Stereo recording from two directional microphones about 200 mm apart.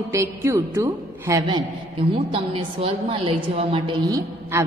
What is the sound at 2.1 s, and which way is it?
A woman's voice, 25° right (ahead or behind).